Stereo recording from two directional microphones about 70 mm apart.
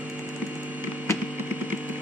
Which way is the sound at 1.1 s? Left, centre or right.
Left.